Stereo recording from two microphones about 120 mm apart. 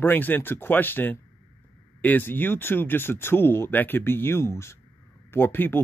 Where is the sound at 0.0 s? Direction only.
15° left (ahead or behind).